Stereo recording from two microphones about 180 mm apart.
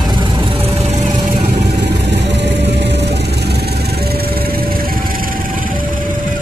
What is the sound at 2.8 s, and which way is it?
Music, 70° right (ahead or behind).